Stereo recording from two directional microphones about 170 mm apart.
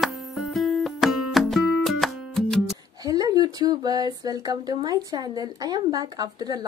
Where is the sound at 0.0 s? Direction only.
Centre (ahead or behind).